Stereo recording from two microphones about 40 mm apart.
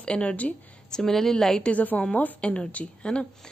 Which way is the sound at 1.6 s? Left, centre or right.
Left.